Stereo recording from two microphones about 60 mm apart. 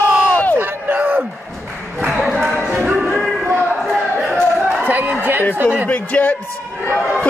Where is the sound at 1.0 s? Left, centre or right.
Right.